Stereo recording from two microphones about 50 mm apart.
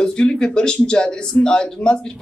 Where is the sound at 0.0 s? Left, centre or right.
Centre.